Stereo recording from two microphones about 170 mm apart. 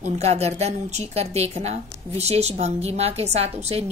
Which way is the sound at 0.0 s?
40° right (ahead or behind).